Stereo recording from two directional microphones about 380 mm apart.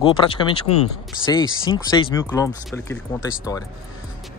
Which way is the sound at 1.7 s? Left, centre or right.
Centre.